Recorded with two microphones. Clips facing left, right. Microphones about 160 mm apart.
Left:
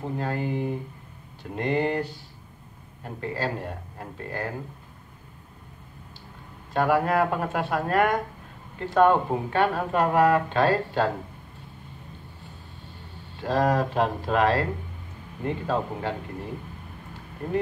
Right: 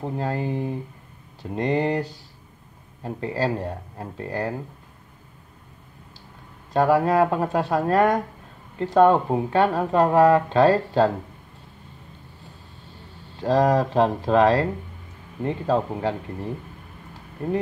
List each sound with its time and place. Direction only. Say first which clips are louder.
0.2 s speech: right 2 dB; 35° right (ahead or behind)
6.7 s speech: right 4 dB; 35° right (ahead or behind)
13.4 s speech: right 4 dB; 35° right (ahead or behind)